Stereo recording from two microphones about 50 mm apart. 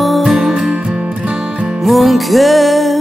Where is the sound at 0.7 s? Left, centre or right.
Right.